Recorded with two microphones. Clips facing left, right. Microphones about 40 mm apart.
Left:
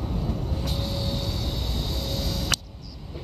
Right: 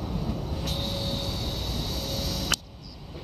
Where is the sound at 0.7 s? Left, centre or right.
Right.